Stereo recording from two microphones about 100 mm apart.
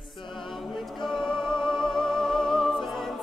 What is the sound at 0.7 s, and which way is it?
Music, 5° left (ahead or behind).